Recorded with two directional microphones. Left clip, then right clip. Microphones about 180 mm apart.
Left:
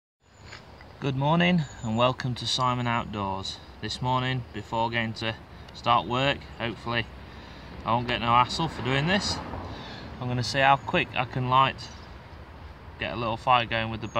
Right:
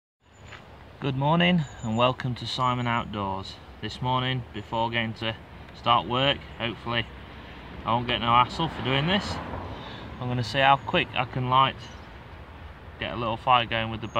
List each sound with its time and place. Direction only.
1.0 s speech: 5° left (ahead or behind)
9.4 s a sound: 50° right (ahead or behind)
9.8 s speech: 5° left (ahead or behind)
13.0 s speech: 10° left (ahead or behind)